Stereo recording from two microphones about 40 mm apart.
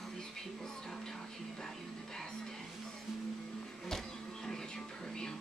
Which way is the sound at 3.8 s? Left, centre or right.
Centre.